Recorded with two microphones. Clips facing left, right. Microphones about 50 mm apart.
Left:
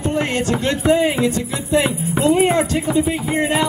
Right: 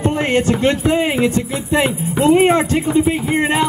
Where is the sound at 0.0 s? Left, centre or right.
Right.